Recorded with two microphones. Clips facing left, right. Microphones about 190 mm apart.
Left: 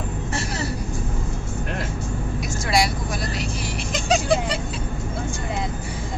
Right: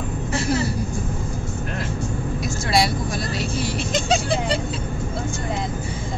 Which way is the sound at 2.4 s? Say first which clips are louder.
Right 1 dB; 25° right (ahead or behind).